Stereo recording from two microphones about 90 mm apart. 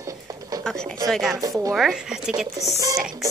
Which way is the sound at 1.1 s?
Centre (ahead or behind).